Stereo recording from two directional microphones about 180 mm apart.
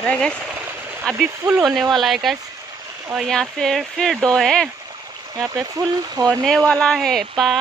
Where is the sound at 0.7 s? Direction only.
10° right (ahead or behind).